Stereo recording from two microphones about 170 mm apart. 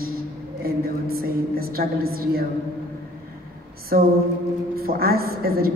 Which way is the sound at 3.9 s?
60° right (ahead or behind).